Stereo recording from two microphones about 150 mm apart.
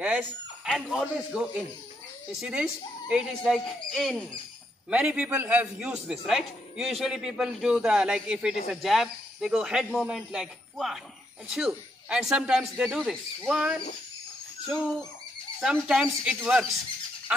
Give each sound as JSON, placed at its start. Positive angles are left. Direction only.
{"t": 0.0, "sound": "speech", "side_deg": -5}
{"t": 3.1, "sound": "a man's voice", "side_deg": -5}